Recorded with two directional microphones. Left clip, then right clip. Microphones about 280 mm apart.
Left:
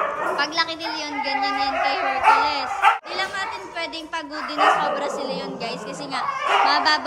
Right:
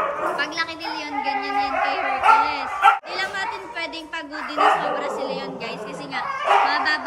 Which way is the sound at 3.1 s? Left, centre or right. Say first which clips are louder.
Even; centre.